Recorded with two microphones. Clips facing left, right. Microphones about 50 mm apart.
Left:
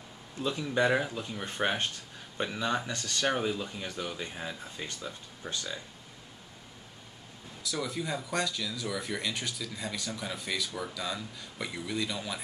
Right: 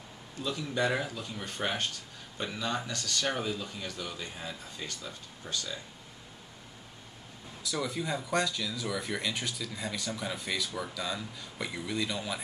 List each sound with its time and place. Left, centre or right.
0.4 s speech: left
7.6 s speech: centre